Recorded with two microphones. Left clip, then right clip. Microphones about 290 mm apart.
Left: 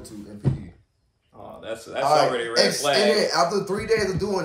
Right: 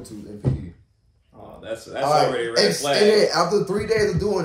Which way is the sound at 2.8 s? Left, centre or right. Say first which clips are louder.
Right 1 dB; centre.